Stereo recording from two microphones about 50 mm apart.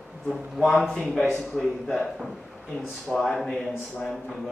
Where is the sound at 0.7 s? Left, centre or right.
Left.